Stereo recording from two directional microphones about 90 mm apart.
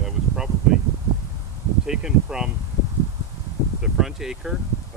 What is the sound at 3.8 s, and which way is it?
Speech, 5° right (ahead or behind).